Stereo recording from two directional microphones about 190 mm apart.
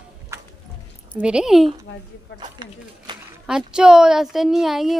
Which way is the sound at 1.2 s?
5° right (ahead or behind).